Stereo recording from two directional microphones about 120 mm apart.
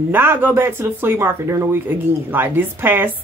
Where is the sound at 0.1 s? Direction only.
15° right (ahead or behind).